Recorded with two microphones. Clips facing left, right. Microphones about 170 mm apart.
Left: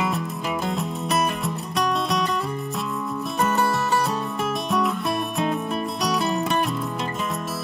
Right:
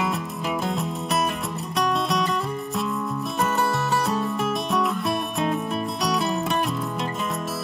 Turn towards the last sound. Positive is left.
turn(degrees=0)  # may be behind; listen again after turning